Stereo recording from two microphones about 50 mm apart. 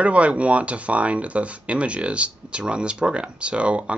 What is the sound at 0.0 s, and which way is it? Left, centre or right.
Speech, right.